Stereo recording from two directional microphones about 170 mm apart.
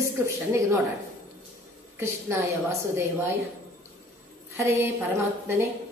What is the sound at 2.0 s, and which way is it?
A woman's voice, 15° right (ahead or behind).